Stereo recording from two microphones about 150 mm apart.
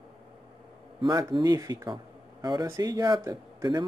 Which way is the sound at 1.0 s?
30° right (ahead or behind).